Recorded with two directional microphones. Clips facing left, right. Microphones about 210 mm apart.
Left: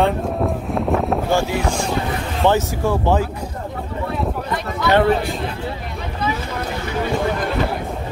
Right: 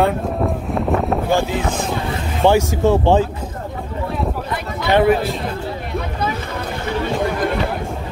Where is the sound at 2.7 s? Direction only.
25° right (ahead or behind).